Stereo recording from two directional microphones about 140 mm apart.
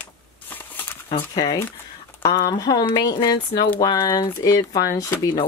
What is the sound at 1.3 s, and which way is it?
Speech, 30° left (ahead or behind).